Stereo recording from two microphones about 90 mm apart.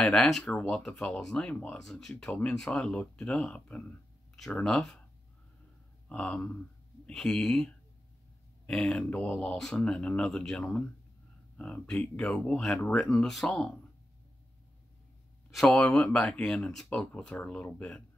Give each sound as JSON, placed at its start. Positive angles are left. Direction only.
{"t": 0.0, "sound": "speech", "side_deg": 5}
{"t": 6.0, "sound": "speech", "side_deg": 10}
{"t": 15.5, "sound": "speech", "side_deg": 5}